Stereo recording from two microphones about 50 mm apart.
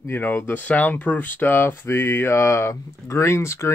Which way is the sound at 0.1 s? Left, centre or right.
Left.